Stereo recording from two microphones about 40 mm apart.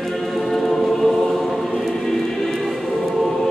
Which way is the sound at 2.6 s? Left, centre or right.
Centre.